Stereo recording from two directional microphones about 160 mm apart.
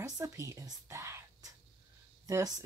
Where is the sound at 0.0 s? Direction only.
20° right (ahead or behind).